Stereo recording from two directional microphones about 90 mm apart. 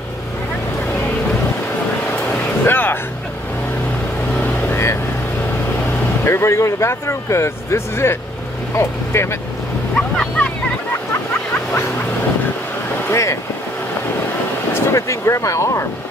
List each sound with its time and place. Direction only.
2.6 s music: 25° left (ahead or behind)
4.4 s vehicle: 25° left (ahead or behind)
6.2 s speech: 30° left (ahead or behind)
9.9 s vehicle: 10° left (ahead or behind)
13.1 s speech: 30° left (ahead or behind)
14.7 s speech: 30° left (ahead or behind)